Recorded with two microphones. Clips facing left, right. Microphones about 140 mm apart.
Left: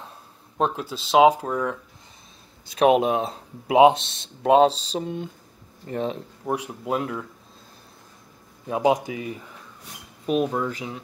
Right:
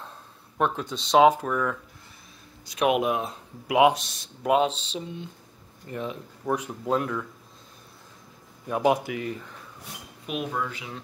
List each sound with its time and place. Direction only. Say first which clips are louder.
0.7 s speech: left 1 dB; 5° left (ahead or behind)
1.2 s speech: left 2 dB; 15° left (ahead or behind)
2.8 s speech: left 5 dB; 30° left (ahead or behind)
5.0 s speech: left 7 dB; 50° left (ahead or behind)
5.9 s speech: left 6 dB; 30° left (ahead or behind)
6.4 s speech: even; 15° left (ahead or behind)
8.6 s speech: left 2 dB; 20° left (ahead or behind)
10.2 s speech: left 7 dB; 35° left (ahead or behind)